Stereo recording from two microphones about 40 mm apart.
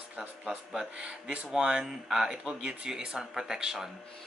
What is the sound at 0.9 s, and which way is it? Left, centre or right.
Speech, right.